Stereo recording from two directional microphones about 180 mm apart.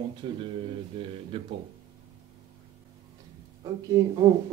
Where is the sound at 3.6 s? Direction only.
20° right (ahead or behind).